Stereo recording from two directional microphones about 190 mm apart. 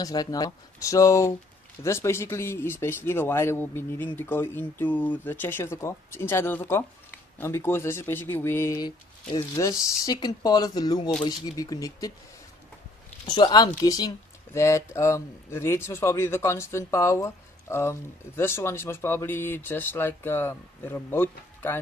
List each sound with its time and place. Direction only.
0.0 s speech: 20° left (ahead or behind)
13.2 s speech: 25° left (ahead or behind)